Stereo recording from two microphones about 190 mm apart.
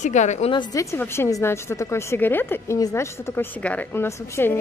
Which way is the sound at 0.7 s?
15° left (ahead or behind).